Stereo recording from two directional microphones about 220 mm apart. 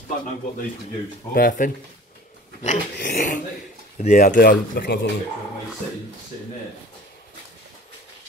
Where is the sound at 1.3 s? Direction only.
40° left (ahead or behind).